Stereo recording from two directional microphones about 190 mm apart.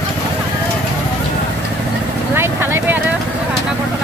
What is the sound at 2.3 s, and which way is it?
Speech, 10° right (ahead or behind).